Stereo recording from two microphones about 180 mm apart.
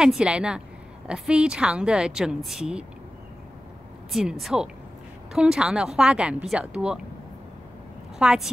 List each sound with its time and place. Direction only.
0.0 s a woman's voice: 5° right (ahead or behind)
4.1 s a woman's voice: centre (ahead or behind)
8.2 s a woman's voice: 5° right (ahead or behind)